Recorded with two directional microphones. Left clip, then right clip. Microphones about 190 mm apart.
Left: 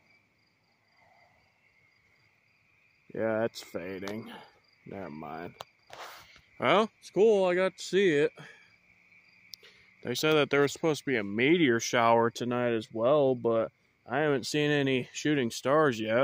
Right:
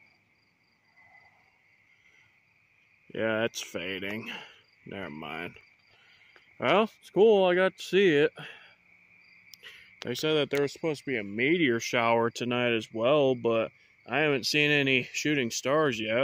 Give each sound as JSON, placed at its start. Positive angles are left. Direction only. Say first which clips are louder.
{"t": 3.1, "sound": "speech", "louder": "right 1 dB", "side_deg": -5}
{"t": 4.3, "sound": "cricket", "louder": "right 7 dB", "side_deg": -20}
{"t": 6.6, "sound": "speech", "louder": "even", "side_deg": 0}
{"t": 7.0, "sound": "speech", "louder": "right 2 dB", "side_deg": -15}
{"t": 9.6, "sound": "speech", "louder": "right 6 dB", "side_deg": 0}